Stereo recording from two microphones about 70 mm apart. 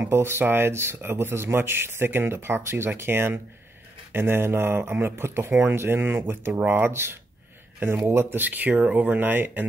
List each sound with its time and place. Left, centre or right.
0.0 s a man's voice: right